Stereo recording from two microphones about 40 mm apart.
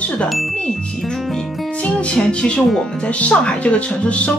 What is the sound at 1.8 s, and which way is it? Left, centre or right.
Speech, left.